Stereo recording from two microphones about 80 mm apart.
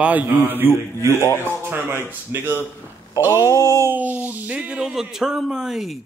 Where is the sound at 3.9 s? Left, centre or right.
Right.